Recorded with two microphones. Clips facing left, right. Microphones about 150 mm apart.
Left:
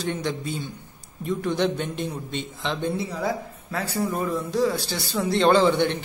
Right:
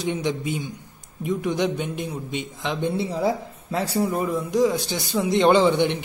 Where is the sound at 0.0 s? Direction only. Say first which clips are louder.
Right 3 dB; 15° right (ahead or behind).